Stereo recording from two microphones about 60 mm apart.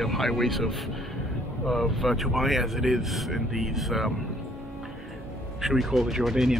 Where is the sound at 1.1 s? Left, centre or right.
Centre.